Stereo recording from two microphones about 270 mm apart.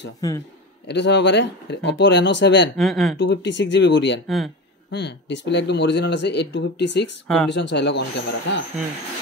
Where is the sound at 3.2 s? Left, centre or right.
Left.